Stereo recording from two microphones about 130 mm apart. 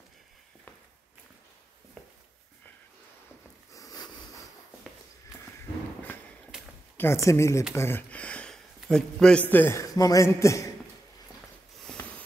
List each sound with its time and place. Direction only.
2.0 s walk: 5° left (ahead or behind)
3.7 s a sound: 30° left (ahead or behind)
7.0 s a man's voice: 20° left (ahead or behind); by 9.4 s 5° left (ahead or behind)
9.5 s speech: 15° left (ahead or behind)